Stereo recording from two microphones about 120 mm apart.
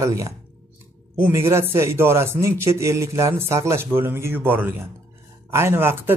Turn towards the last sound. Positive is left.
turn(degrees=-20)  # may be behind; listen again after turning